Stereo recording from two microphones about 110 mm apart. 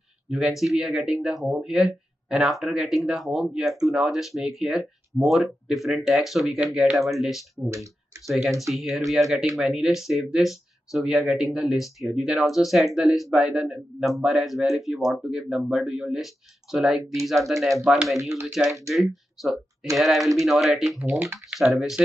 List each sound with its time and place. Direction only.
0.3 s speech: centre (ahead or behind)